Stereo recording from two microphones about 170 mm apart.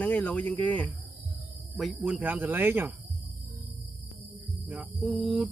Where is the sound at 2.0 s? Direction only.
10° right (ahead or behind).